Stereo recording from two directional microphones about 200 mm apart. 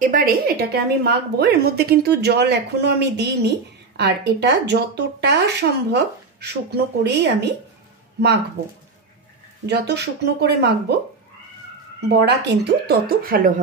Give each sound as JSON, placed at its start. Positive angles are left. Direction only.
{"t": 0.0, "sound": "a woman's voice", "side_deg": -45}
{"t": 9.7, "sound": "a woman's voice", "side_deg": -55}
{"t": 12.1, "sound": "speech", "side_deg": -60}